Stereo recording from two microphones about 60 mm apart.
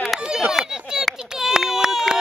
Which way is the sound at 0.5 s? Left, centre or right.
Centre.